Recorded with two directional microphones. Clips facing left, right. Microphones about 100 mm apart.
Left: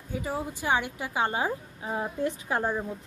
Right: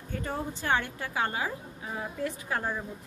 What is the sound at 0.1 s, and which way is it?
A woman's voice, 5° left (ahead or behind).